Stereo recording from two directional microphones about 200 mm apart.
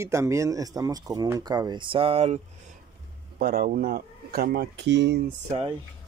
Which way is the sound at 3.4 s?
45° right (ahead or behind).